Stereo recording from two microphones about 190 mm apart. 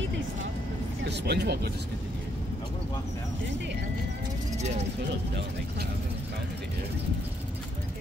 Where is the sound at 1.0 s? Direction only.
60° right (ahead or behind).